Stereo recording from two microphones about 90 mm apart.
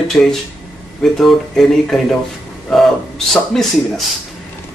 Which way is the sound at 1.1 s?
5° left (ahead or behind).